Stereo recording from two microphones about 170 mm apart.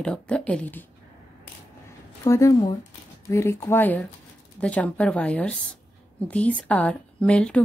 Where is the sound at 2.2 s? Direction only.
20° left (ahead or behind).